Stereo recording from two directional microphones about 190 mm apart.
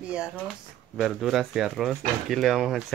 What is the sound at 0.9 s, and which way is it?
Speech, centre (ahead or behind).